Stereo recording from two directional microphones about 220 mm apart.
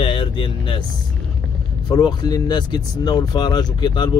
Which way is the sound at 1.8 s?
20° left (ahead or behind).